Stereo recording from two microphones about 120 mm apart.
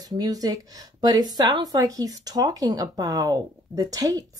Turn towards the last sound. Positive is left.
turn(degrees=-30)  # may be behind; listen again after turning